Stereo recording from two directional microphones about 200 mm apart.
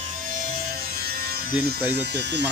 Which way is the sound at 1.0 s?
50° right (ahead or behind).